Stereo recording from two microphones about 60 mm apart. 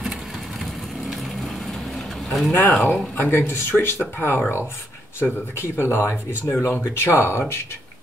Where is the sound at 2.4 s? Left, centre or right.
Left.